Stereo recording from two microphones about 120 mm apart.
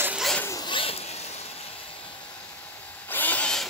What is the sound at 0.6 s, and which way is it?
Zipper, 45° left (ahead or behind).